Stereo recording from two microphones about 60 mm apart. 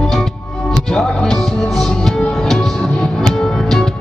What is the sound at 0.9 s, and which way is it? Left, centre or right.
Music, centre.